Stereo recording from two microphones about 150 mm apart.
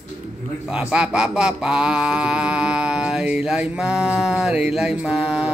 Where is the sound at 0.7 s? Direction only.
5° right (ahead or behind).